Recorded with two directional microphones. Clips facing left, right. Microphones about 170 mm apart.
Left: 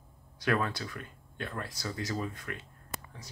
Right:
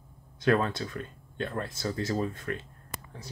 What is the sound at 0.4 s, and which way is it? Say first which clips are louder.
Speech: right 5 dB; 25° right (ahead or behind).